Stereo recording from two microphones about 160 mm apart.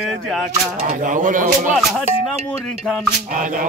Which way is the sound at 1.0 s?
55° right (ahead or behind).